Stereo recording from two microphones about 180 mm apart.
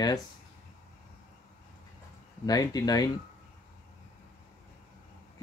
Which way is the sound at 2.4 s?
20° left (ahead or behind).